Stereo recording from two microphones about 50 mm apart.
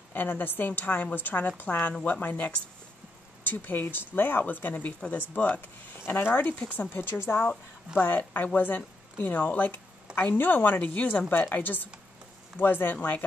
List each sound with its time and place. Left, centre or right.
0.1 s speech: left
5.9 s speech: left
7.0 s a woman's voice: left